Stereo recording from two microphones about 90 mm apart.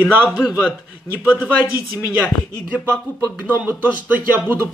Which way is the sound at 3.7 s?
20° right (ahead or behind).